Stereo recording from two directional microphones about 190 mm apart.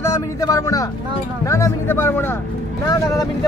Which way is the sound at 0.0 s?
15° left (ahead or behind).